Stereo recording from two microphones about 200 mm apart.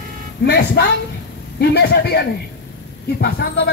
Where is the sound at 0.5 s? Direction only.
55° left (ahead or behind).